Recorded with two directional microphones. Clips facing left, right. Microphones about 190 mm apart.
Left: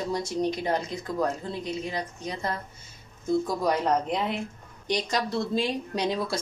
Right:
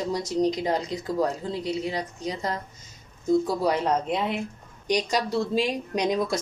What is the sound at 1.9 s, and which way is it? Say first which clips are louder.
Speech: right 2 dB; 15° right (ahead or behind).